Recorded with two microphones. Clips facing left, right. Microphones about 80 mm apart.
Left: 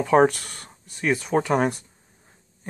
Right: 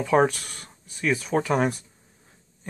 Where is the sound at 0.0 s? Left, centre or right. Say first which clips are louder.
Left 3 dB; centre.